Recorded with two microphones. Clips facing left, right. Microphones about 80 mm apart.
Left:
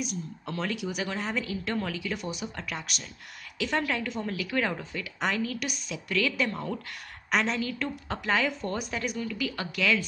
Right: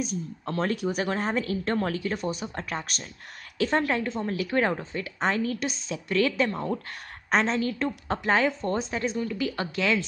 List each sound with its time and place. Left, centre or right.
0.0 s speech: right